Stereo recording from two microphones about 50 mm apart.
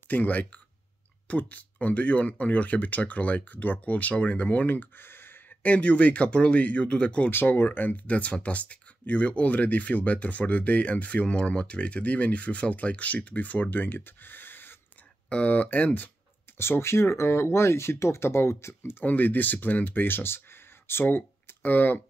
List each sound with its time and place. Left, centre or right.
0.1 s speech: left
5.6 s speech: left
7.2 s speech: left
15.2 s speech: left
16.5 s speech: left
19.0 s speech: left